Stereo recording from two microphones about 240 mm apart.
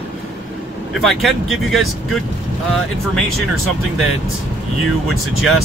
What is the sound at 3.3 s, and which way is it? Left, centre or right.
Speech, left.